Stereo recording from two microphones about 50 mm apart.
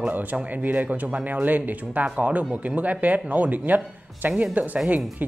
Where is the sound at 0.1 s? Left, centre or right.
Right.